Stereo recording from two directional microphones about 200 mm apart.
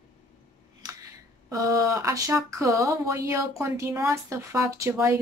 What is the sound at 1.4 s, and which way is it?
A woman's voice, 15° right (ahead or behind).